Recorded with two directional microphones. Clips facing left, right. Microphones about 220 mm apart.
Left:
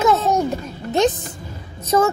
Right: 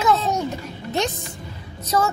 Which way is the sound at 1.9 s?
20° left (ahead or behind).